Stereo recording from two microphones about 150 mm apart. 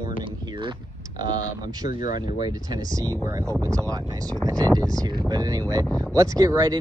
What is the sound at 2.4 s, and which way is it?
Speech, 25° right (ahead or behind).